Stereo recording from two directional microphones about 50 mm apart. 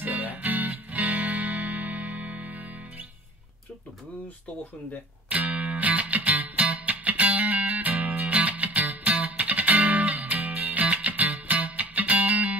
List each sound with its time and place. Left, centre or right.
0.0 s music: right
5.3 s music: right